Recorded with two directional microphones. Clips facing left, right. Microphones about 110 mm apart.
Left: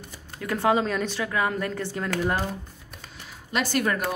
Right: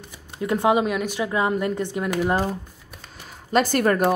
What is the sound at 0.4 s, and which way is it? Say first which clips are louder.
A woman's voice: right 3 dB; 20° right (ahead or behind).